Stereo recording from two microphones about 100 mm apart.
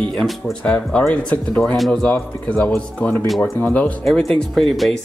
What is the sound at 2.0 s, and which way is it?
Speech, 10° left (ahead or behind).